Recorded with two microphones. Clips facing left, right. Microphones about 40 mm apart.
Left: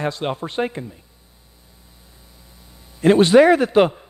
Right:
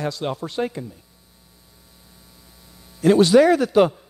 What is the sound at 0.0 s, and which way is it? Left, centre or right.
Speech, left.